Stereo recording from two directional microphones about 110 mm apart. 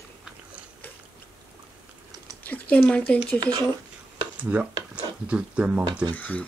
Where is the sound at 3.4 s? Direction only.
40° right (ahead or behind).